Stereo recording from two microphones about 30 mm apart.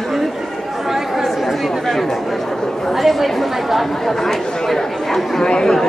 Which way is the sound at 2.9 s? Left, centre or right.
Centre.